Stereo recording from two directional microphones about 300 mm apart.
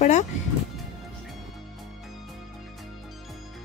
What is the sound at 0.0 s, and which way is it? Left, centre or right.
Speech, left.